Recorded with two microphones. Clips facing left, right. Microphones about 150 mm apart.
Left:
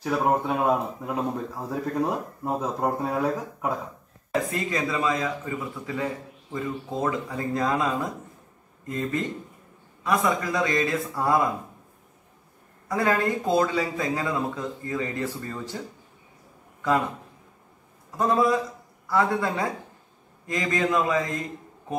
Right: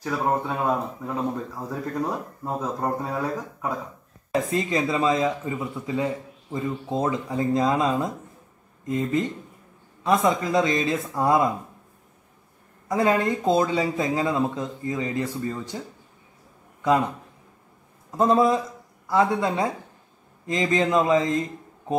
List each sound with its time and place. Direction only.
0.0 s speech: 10° left (ahead or behind)
4.5 s speech: 25° right (ahead or behind)
12.8 s speech: 20° right (ahead or behind)
18.1 s speech: 25° right (ahead or behind)